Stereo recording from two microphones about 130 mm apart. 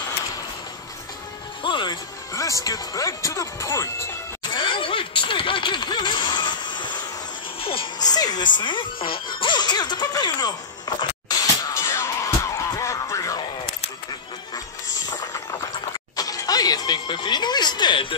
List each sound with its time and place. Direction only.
1.6 s music: 40° left (ahead or behind)
2.3 s speech: 25° left (ahead or behind)
4.4 s a sound: 35° left (ahead or behind)
7.6 s music: 45° left (ahead or behind)
8.0 s speech: 30° left (ahead or behind)
11.7 s music: 20° left (ahead or behind)
15.0 s a sound: 30° left (ahead or behind)
16.2 s television: 30° left (ahead or behind)